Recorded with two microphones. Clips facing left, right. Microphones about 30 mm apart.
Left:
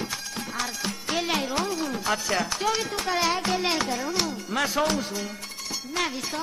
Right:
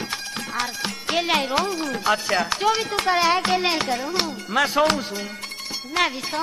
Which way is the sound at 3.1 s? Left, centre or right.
Right.